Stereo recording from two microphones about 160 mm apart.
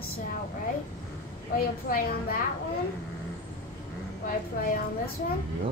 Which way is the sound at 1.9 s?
60° left (ahead or behind).